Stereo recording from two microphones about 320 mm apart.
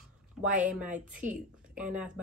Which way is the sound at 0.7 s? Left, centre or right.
Centre.